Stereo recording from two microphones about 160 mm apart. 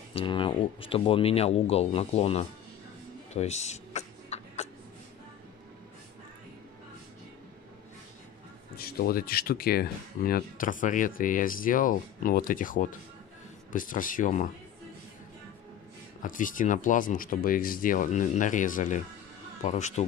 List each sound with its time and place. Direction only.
0.1 s speech: 35° left (ahead or behind)
3.3 s a sound: 45° left (ahead or behind)
8.7 s speech: 75° left (ahead or behind); by 14.5 s 50° left (ahead or behind)
16.2 s speech: 55° left (ahead or behind)